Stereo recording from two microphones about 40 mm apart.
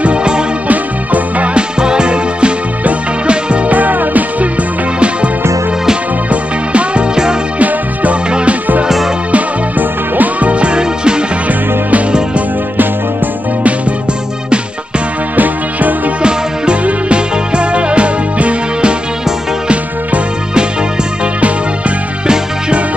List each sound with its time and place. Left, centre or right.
0.0 s music: right
0.7 s music: right
1.5 s music: right
6.7 s music: right
8.8 s music: centre
9.3 s music: right
10.5 s music: right
15.3 s music: right
16.2 s music: right
22.3 s music: right